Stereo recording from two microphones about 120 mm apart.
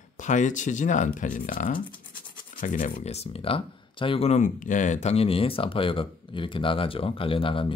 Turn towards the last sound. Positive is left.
turn(degrees=45)  # may be behind; listen again after turning